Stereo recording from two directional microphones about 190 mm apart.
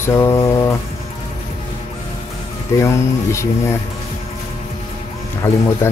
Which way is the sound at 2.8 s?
15° left (ahead or behind).